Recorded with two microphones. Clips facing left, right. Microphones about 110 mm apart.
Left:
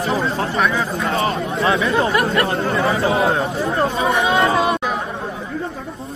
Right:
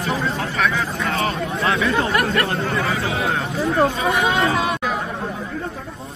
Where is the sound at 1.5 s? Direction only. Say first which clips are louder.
Left 2 dB; 25° left (ahead or behind).